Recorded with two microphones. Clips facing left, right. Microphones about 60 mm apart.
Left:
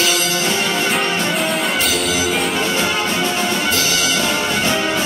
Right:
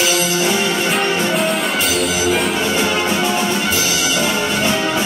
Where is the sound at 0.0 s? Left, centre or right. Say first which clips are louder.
Right 1 dB; centre.